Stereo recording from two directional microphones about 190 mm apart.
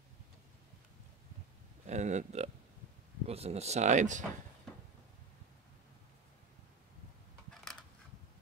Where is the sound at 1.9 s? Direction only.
40° right (ahead or behind).